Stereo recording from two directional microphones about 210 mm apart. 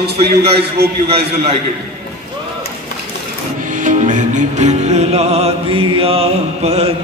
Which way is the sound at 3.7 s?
40° right (ahead or behind).